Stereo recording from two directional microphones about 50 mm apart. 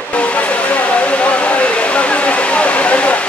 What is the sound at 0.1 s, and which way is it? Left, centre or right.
Hair dryer, left.